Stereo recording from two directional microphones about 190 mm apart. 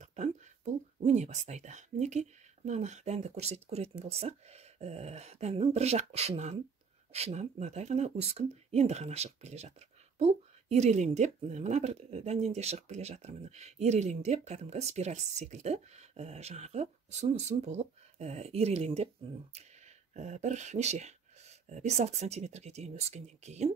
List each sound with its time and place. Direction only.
0.0 s speech: 40° right (ahead or behind)
20.2 s speech: 35° right (ahead or behind)